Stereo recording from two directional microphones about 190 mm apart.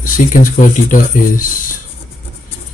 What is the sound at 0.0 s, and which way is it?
Speech, 45° left (ahead or behind).